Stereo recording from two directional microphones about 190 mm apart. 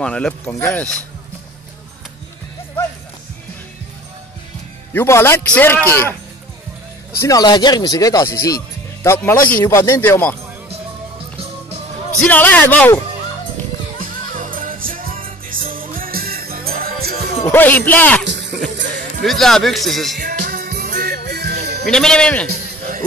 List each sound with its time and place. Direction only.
0.0 s a man's voice: 5° left (ahead or behind)
4.9 s a man's voice: 15° left (ahead or behind)
7.2 s a man's voice: 20° left (ahead or behind)
12.2 s a man's voice: 10° left (ahead or behind)
13.9 s music: 45° right (ahead or behind)
17.5 s a man's voice: 10° left (ahead or behind)
18.2 s music: 70° right (ahead or behind)
19.2 s speech: centre (ahead or behind)
20.2 s music: 55° right (ahead or behind)
21.8 s speech: 5° left (ahead or behind)
22.5 s music: 45° right (ahead or behind)